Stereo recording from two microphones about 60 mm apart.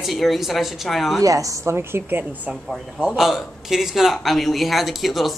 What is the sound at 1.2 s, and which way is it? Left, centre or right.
Speech, right.